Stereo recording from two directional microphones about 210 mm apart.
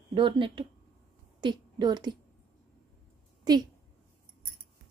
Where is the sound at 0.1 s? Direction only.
25° right (ahead or behind).